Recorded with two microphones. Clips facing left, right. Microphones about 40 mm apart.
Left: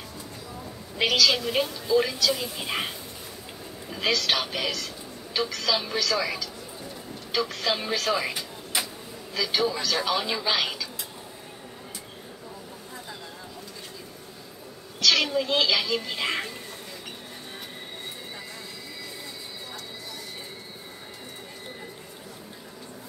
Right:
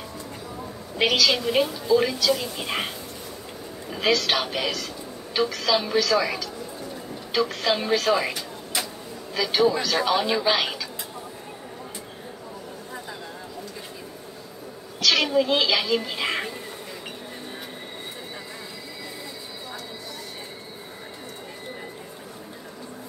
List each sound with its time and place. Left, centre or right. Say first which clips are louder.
0.9 s a woman's voice: right 1 dB; centre
3.9 s a woman's voice: right 3 dB; centre
8.7 s a sound: even; centre
9.3 s speech: right 5 dB; centre
15.0 s speech: right 2 dB; centre